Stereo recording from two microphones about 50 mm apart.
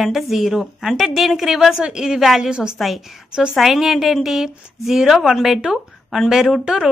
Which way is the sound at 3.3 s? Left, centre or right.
Centre.